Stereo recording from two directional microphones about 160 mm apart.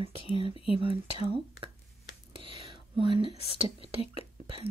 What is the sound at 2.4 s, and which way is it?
Whispering, 35° right (ahead or behind).